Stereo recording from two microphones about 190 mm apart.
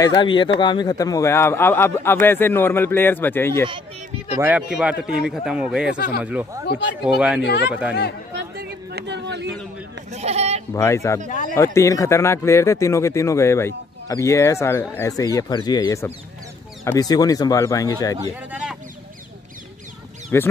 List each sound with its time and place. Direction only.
0.0 s speech: 25° left (ahead or behind)
4.4 s speech: 5° right (ahead or behind)
8.4 s chatter: 55° right (ahead or behind)
10.1 s speech: 35° right (ahead or behind)
10.7 s speech: 15° left (ahead or behind)
11.2 s speech: 45° left (ahead or behind)
11.5 s speech: 15° left (ahead or behind)
18.2 s speech: 5° right (ahead or behind)
20.3 s speech: 15° left (ahead or behind)